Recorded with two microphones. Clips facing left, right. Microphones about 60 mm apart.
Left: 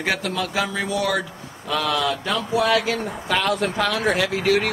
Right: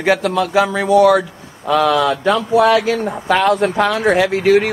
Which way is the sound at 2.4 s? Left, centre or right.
Centre.